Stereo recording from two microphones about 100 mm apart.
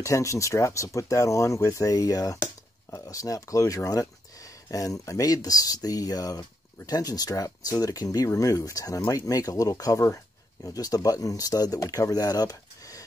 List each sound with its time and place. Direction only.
0.0 s speech: 30° left (ahead or behind)